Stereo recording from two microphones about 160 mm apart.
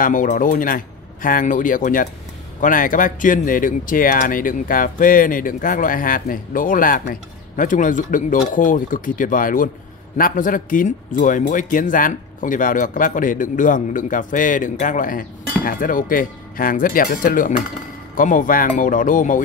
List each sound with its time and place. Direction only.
0.0 s a man's voice: 55° left (ahead or behind)